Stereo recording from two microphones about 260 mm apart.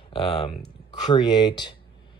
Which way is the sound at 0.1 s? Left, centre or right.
Centre.